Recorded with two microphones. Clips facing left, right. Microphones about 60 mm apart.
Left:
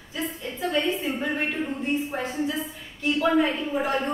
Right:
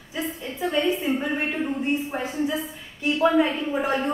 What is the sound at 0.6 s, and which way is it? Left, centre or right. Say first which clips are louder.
A woman's voice: right 2 dB; centre.